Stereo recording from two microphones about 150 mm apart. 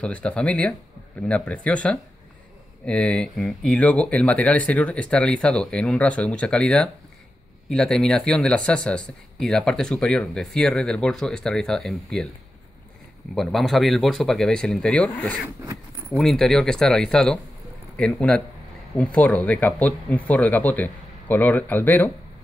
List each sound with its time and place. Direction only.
0.0 s speech: 10° left (ahead or behind)
13.3 s speech: centre (ahead or behind)
15.4 s zipper: 20° right (ahead or behind)
16.1 s speech: centre (ahead or behind)